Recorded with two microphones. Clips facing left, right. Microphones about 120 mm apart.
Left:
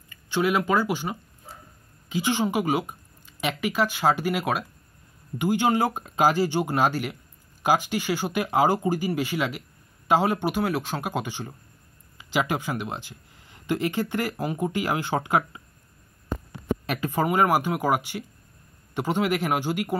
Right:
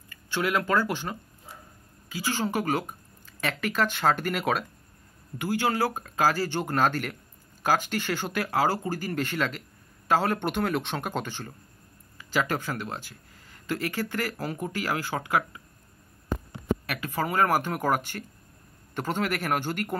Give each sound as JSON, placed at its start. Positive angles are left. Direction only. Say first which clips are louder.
{"t": 0.1, "sound": "speech", "louder": "left 4 dB", "side_deg": 15}
{"t": 2.0, "sound": "speech", "louder": "left 5 dB", "side_deg": 20}
{"t": 5.4, "sound": "speech", "louder": "left 4 dB", "side_deg": 20}
{"t": 16.8, "sound": "speech", "louder": "left 5 dB", "side_deg": 25}